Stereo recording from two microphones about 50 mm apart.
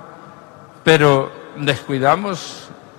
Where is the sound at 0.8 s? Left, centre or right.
Centre.